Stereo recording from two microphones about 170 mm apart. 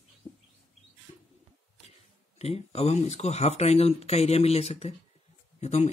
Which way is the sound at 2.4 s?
35° left (ahead or behind).